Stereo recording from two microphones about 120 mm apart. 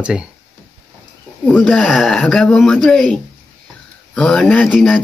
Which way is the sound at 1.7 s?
Centre (ahead or behind).